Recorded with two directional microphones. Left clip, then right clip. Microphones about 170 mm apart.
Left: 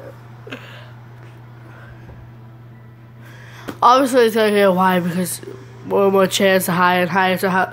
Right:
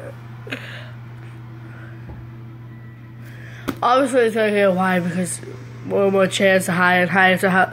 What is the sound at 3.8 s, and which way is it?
Speech, 35° left (ahead or behind).